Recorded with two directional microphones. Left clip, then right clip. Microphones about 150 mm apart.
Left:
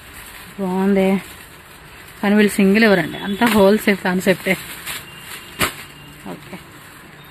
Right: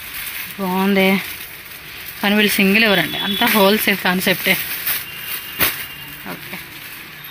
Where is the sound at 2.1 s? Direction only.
20° left (ahead or behind).